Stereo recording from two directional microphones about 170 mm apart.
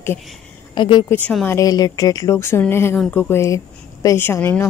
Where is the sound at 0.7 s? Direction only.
25° left (ahead or behind).